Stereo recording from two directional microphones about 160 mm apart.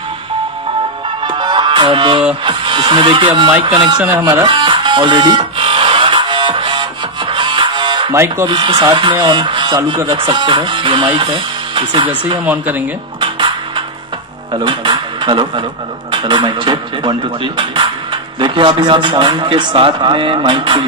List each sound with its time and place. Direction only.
1.2 s music: 30° right (ahead or behind)
2.4 s speech: 30° right (ahead or behind)
4.2 s a sound: 25° right (ahead or behind)
8.1 s speech: 15° right (ahead or behind)
8.5 s speech: 35° right (ahead or behind)
12.4 s speech: 10° right (ahead or behind)
13.2 s music: 30° right (ahead or behind)
14.5 s speech: 30° right (ahead or behind)